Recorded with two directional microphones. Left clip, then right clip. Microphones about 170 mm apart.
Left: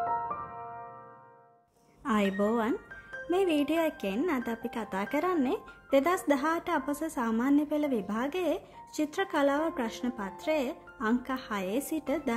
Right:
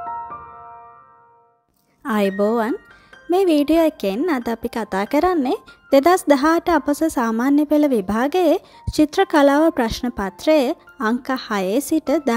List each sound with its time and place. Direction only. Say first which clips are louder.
2.0 s a woman's voice: right 10 dB; 35° right (ahead or behind)